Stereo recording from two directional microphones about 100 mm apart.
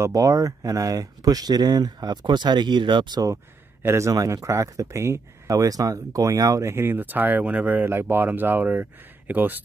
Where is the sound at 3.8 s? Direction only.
25° right (ahead or behind).